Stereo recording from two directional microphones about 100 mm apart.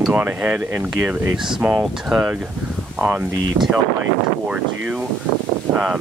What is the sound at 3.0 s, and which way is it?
Speech, 15° right (ahead or behind).